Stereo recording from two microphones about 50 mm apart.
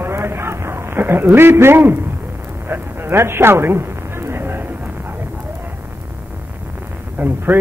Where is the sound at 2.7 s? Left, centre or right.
Right.